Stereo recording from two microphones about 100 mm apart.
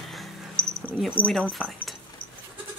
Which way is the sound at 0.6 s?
10° left (ahead or behind).